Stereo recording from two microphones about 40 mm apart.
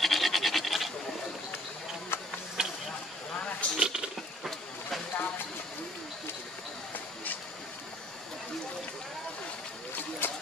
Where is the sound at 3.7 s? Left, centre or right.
Centre.